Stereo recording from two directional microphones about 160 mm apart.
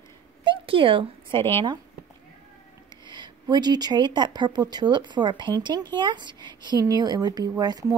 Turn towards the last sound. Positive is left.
turn(degrees=-25)  # may be behind; listen again after turning